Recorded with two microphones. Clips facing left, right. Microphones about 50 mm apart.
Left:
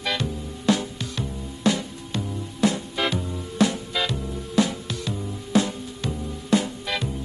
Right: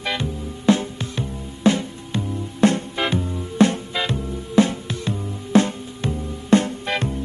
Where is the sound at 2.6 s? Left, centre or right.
Right.